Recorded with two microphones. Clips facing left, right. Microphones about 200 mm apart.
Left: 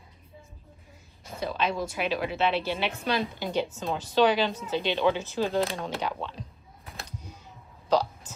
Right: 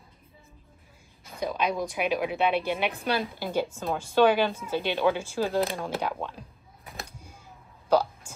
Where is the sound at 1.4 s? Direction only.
15° right (ahead or behind).